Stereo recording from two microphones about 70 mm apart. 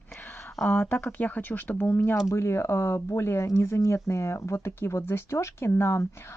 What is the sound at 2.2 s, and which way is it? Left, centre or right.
Speech, left.